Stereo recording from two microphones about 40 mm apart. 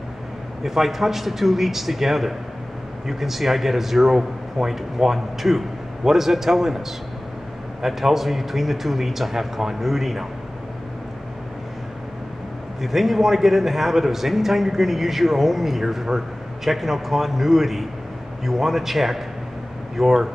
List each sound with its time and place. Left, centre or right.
0.7 s a man's voice: centre
7.8 s a man's voice: centre
12.8 s a man's voice: centre